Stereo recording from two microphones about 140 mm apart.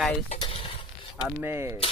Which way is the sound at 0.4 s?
40° left (ahead or behind).